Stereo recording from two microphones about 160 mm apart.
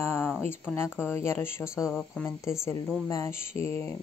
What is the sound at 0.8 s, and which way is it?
Speech, 5° right (ahead or behind).